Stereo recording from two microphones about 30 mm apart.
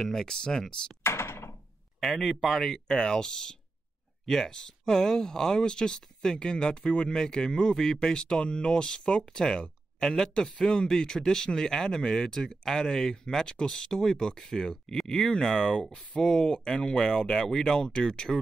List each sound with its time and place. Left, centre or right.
0.1 s speech: left
2.0 s speech: centre; by 18.3 s left